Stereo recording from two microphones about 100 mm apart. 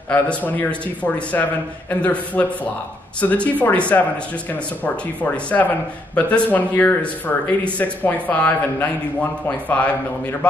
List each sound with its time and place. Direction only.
0.1 s speech: 15° left (ahead or behind)